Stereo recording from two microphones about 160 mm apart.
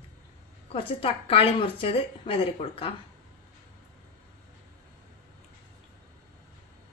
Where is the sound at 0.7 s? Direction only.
35° left (ahead or behind).